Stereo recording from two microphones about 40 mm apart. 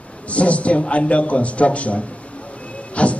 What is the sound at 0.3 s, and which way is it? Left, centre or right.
A man's voice, left.